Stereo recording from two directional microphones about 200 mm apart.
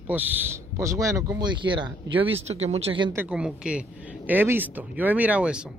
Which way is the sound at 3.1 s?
10° right (ahead or behind).